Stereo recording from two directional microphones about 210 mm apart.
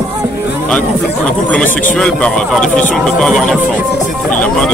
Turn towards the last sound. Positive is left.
turn(degrees=5)  # may be behind; listen again after turning